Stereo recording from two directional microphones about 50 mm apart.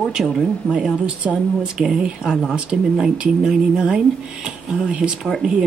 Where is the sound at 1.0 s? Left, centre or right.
Right.